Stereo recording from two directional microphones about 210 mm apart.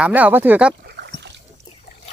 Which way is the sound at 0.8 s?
50° right (ahead or behind).